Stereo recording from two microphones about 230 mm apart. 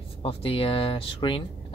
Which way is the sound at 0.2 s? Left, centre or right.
Left.